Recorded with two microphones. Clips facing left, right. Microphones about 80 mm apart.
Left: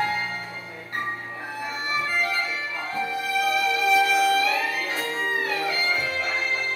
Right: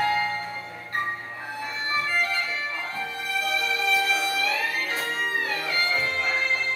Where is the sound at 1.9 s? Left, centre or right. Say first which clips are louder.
Even; centre.